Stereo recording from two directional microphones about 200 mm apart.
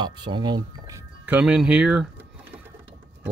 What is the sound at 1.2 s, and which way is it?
Speech, 5° right (ahead or behind).